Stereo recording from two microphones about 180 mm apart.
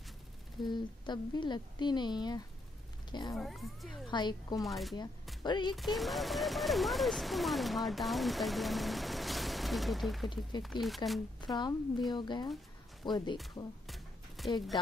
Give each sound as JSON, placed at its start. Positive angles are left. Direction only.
{"t": 0.6, "sound": "a woman's voice", "side_deg": 25}
{"t": 3.3, "sound": "speech", "side_deg": 0}
{"t": 4.1, "sound": "a woman's voice", "side_deg": 25}
{"t": 4.6, "sound": "speech", "side_deg": 0}
{"t": 5.4, "sound": "a woman's voice", "side_deg": 25}
{"t": 5.8, "sound": "speech", "side_deg": 0}
{"t": 11.4, "sound": "a woman's voice", "side_deg": 25}
{"t": 13.8, "sound": "a sound", "side_deg": 0}